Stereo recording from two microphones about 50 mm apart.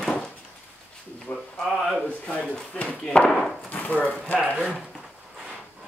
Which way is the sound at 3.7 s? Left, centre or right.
Left.